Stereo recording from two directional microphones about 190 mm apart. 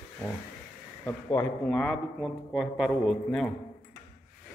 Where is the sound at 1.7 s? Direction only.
Centre (ahead or behind).